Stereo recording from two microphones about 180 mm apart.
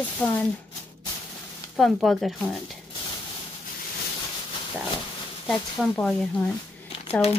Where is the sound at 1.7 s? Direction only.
Centre (ahead or behind).